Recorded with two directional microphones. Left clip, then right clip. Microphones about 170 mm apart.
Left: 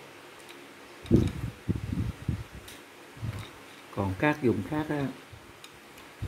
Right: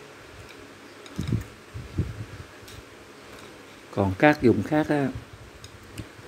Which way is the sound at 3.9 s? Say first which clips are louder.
Right 8 dB; 15° right (ahead or behind).